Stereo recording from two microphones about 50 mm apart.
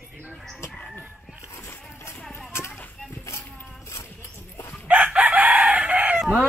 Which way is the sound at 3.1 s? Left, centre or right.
Left.